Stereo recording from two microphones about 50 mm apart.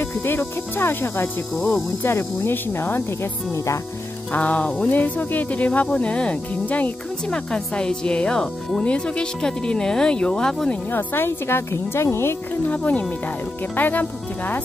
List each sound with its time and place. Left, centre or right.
0.0 s speech: left
3.5 s speech: left
4.3 s speech: left
7.2 s speech: centre
8.8 s speech: centre
10.9 s speech: left
12.6 s speech: left